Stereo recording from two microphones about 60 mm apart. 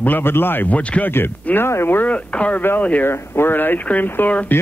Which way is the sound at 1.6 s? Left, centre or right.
Left.